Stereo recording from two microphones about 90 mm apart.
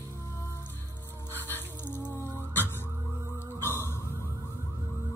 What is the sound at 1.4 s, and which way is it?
Music, 25° left (ahead or behind).